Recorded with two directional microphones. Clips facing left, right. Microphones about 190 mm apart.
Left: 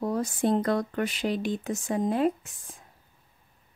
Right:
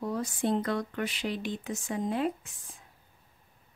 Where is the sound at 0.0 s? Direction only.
45° left (ahead or behind).